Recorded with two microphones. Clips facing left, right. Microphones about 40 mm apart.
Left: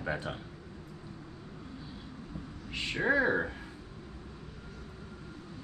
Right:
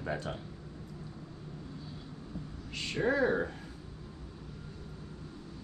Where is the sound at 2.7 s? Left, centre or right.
Centre.